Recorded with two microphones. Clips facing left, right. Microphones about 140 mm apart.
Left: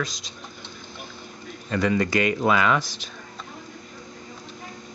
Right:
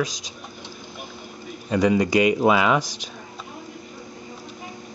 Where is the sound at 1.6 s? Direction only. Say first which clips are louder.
Right 3 dB; 15° right (ahead or behind).